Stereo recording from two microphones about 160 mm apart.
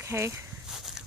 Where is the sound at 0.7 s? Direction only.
Centre (ahead or behind).